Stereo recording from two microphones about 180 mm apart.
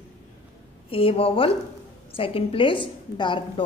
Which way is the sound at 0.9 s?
30° left (ahead or behind).